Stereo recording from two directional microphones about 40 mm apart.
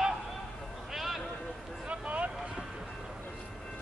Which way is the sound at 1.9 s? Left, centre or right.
Right.